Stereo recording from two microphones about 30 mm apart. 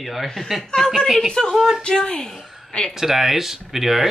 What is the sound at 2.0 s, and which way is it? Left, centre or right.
Speech, left.